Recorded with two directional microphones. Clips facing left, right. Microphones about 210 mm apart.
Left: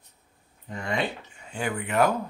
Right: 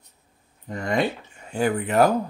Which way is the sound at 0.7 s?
40° right (ahead or behind).